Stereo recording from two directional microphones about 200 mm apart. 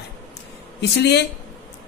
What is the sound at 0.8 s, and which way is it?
Speech, 55° left (ahead or behind).